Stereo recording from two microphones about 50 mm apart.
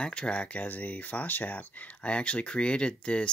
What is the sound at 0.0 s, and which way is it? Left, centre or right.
Speech, left.